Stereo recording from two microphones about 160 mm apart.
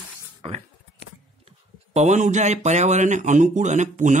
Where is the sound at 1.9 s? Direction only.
45° right (ahead or behind).